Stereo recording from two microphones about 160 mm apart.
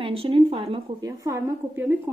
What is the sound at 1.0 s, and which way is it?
Speech, 20° right (ahead or behind).